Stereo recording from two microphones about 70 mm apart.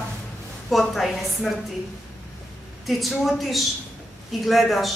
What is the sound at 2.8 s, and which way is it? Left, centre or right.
A woman's voice, centre.